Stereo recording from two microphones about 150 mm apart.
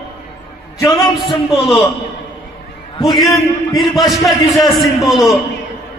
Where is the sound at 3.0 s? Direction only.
Centre (ahead or behind).